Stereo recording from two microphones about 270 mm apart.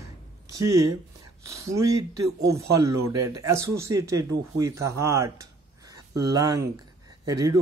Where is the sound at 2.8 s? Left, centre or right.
Right.